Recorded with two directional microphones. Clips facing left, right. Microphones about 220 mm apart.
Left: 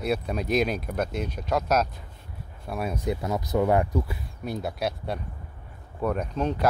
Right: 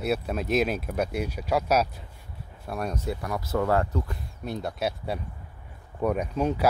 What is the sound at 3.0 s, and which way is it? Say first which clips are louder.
Speech: left 3 dB; 20° left (ahead or behind).